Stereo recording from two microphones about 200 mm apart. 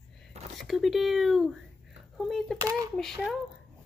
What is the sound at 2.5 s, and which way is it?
Speech, 15° right (ahead or behind).